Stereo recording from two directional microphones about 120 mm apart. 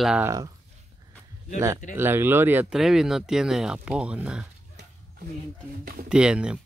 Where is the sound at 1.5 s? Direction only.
25° right (ahead or behind).